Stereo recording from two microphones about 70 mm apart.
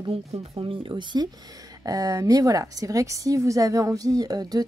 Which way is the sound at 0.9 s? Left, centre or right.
Right.